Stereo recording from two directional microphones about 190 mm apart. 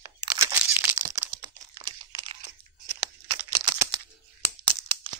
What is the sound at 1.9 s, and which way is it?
Crumpling, 25° right (ahead or behind).